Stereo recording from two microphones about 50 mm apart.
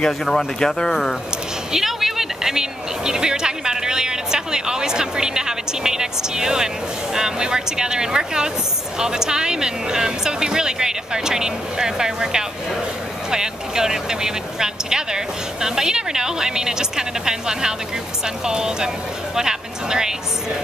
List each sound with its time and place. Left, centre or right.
0.0 s speech: centre
1.7 s speech: centre
19.3 s a sound: centre